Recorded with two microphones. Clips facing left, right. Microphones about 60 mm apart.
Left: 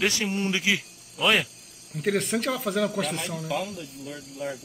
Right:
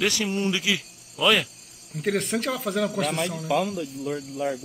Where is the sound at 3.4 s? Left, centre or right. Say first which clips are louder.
Right 6 dB; right.